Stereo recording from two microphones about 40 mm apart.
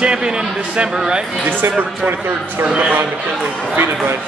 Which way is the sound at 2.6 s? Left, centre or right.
Right.